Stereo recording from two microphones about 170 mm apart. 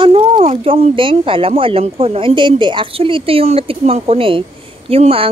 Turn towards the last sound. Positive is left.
turn(degrees=-35)  # may be behind; listen again after turning